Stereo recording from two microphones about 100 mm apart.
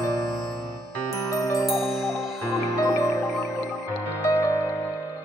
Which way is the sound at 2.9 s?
30° left (ahead or behind).